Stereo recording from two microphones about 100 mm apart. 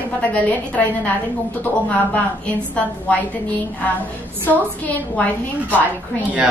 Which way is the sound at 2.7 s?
15° left (ahead or behind).